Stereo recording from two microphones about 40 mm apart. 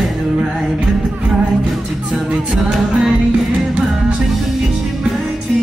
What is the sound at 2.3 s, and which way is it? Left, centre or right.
A capella, right.